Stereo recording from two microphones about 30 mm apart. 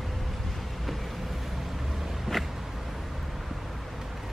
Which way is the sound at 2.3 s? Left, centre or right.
Centre.